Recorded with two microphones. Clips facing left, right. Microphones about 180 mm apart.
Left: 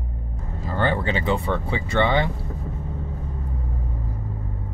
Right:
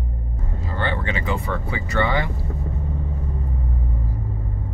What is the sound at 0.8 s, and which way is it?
Speech, 35° left (ahead or behind).